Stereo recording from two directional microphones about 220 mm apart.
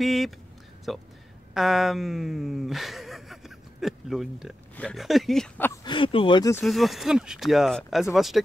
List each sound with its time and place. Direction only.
0.0 s speech: centre (ahead or behind)
5.9 s speech: 25° left (ahead or behind)
6.6 s speech: centre (ahead or behind)